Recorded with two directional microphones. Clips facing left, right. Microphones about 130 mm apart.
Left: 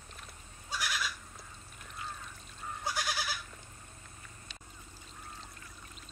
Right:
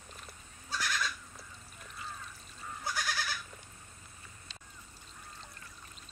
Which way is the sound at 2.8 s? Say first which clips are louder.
Left 1 dB; 15° left (ahead or behind).